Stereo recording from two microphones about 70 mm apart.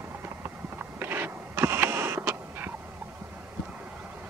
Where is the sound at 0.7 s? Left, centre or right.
Right.